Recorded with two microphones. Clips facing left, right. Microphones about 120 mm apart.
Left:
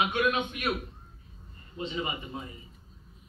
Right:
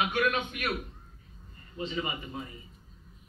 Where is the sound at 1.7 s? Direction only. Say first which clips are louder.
Even; 25° left (ahead or behind).